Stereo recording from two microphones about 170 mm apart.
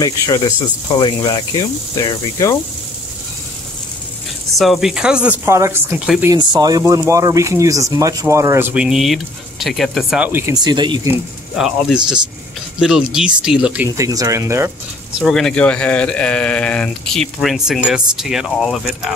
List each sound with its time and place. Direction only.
0.0 s speech: 25° left (ahead or behind)
4.6 s speech: centre (ahead or behind)
6.3 s speech: 25° right (ahead or behind)
11.5 s speech: 5° right (ahead or behind)
13.8 s speech: 20° right (ahead or behind)
15.1 s speech: centre (ahead or behind)